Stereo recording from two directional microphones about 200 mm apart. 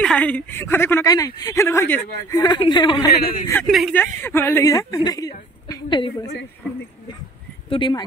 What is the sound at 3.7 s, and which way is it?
Speech, centre (ahead or behind).